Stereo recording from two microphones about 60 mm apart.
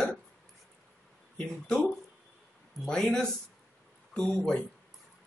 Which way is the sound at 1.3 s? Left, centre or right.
Centre.